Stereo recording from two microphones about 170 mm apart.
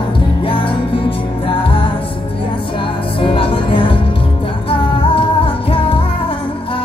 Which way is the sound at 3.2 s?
30° left (ahead or behind).